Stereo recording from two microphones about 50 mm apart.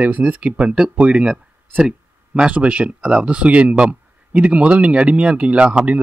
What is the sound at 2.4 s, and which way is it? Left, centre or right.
Speech, right.